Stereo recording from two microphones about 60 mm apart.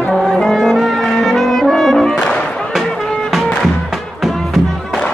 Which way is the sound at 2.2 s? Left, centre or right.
Centre.